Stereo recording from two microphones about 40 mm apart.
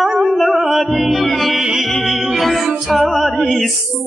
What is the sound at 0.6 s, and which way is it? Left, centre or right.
Music, centre.